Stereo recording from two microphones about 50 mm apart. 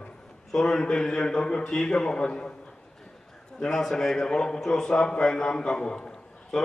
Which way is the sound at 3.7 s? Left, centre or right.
Centre.